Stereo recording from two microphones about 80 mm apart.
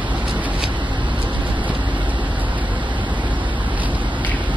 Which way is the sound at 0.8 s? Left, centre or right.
Right.